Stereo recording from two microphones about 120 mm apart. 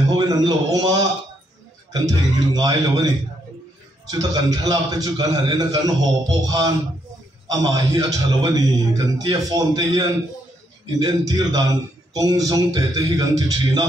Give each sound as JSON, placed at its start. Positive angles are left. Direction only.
{"t": 0.0, "sound": "a man's voice", "side_deg": -30}
{"t": 4.1, "sound": "a man's voice", "side_deg": -30}